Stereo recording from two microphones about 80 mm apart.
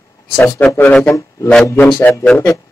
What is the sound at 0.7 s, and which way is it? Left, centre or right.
A man's voice, left.